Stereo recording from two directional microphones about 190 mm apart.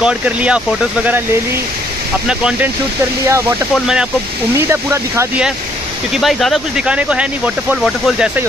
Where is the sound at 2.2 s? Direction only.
5° right (ahead or behind).